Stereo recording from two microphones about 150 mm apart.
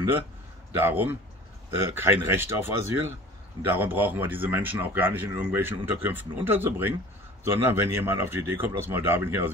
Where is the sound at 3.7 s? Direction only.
15° right (ahead or behind).